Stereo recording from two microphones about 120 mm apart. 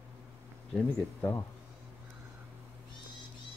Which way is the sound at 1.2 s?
20° left (ahead or behind).